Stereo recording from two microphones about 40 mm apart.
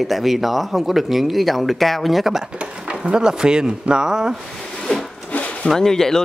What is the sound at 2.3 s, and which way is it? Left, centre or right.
Speech, centre.